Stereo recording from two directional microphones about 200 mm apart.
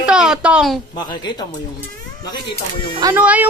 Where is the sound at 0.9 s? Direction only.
20° left (ahead or behind).